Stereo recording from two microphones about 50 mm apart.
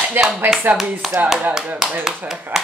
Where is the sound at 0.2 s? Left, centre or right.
Right.